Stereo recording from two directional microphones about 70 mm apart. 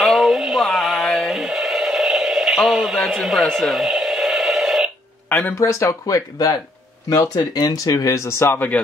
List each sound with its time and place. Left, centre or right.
0.0 s synthetic singing: centre
3.2 s speech: centre
3.4 s radio: centre
5.5 s speech: left
7.1 s speech: left